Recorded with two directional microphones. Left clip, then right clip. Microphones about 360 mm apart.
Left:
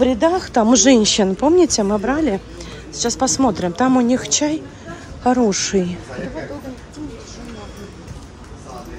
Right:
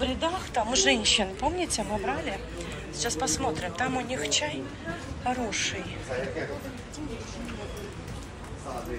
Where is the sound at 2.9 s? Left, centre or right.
Centre.